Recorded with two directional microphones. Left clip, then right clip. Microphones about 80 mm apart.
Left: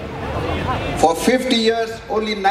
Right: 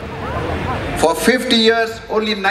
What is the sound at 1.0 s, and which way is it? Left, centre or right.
A man's voice, right.